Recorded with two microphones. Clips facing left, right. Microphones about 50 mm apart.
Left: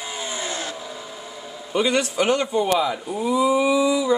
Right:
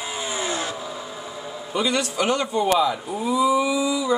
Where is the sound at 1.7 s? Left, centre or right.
Left.